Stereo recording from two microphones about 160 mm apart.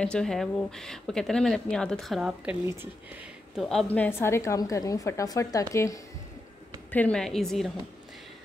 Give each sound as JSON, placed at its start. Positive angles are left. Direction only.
{"t": 0.0, "sound": "speech", "side_deg": 5}
{"t": 2.6, "sound": "speech", "side_deg": -15}
{"t": 3.5, "sound": "a woman's voice", "side_deg": 0}
{"t": 6.9, "sound": "speech", "side_deg": 10}